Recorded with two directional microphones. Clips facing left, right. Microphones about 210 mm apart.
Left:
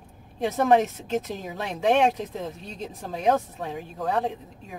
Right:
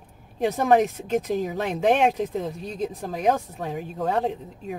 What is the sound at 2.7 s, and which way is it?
Speech, 25° left (ahead or behind).